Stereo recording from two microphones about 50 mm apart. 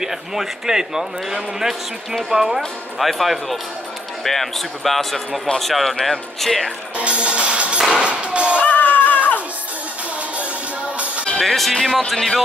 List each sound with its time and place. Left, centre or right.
0.0 s a man's voice: centre
7.0 s music: right
8.5 s a sound: left
11.4 s speech: centre